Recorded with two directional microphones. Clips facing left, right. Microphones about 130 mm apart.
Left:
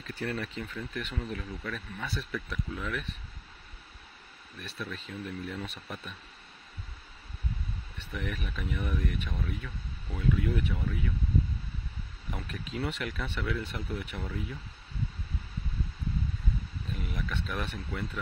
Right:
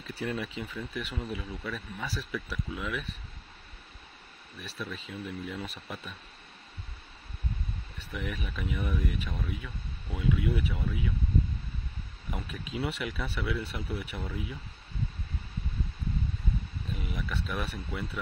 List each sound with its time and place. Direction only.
0.0 s speech: 10° right (ahead or behind)
4.6 s speech: 5° right (ahead or behind)
8.1 s speech: 5° right (ahead or behind)
12.3 s speech: 10° right (ahead or behind)
17.0 s a sound: 5° right (ahead or behind)
17.5 s speech: 10° right (ahead or behind)